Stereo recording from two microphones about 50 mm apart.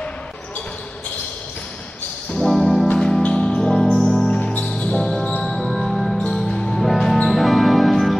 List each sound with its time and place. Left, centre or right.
2.4 s music: centre
2.9 s music: centre
3.6 s music: centre
4.3 s music: centre
5.4 s music: centre